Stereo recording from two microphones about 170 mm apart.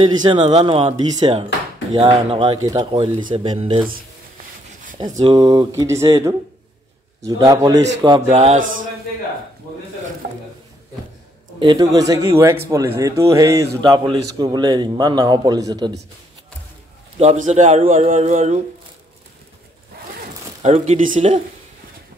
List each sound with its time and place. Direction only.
0.0 s a man's voice: 25° right (ahead or behind)
5.0 s a man's voice: 30° right (ahead or behind)
11.6 s a man's voice: 25° right (ahead or behind)
17.2 s a man's voice: 40° right (ahead or behind)
20.2 s a sound: 45° right (ahead or behind)